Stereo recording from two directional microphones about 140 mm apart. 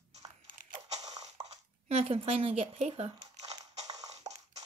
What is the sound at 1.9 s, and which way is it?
Speech, 45° right (ahead or behind).